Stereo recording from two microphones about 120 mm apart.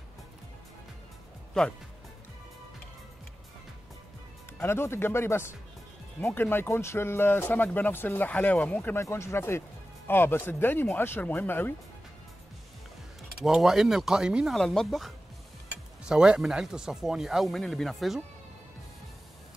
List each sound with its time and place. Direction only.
1.6 s speech: 5° left (ahead or behind)
4.6 s speech: 20° left (ahead or behind)
13.4 s speech: centre (ahead or behind)